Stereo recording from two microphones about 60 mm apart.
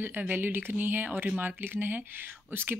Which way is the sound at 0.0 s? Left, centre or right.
Right.